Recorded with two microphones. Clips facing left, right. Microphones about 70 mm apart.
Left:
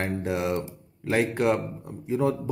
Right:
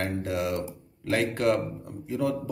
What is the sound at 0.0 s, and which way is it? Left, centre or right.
Speech, left.